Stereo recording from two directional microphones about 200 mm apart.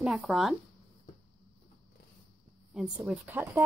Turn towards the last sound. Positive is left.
turn(degrees=-10)  # may be behind; listen again after turning